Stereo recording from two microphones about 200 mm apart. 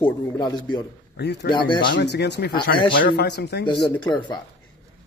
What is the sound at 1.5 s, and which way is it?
Speech, 25° left (ahead or behind).